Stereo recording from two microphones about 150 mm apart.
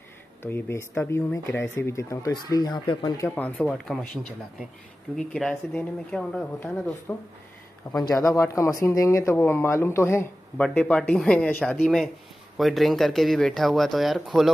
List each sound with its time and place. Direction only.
0.4 s speech: 15° left (ahead or behind)
3.3 s speech: 10° left (ahead or behind)
8.0 s speech: 20° left (ahead or behind)
10.6 s speech: 5° left (ahead or behind)